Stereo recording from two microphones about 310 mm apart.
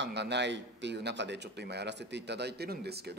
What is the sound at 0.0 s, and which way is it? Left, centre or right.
Speech, right.